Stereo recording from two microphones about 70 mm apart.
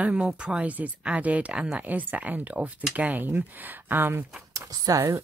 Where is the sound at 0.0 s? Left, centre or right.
Centre.